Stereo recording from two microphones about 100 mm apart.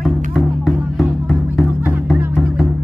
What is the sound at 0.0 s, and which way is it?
Music, centre (ahead or behind).